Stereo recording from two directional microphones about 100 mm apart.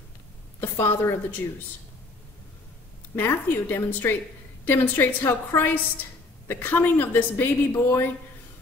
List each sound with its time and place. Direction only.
0.6 s a woman's voice: 20° left (ahead or behind)
3.2 s a woman's voice: 20° left (ahead or behind)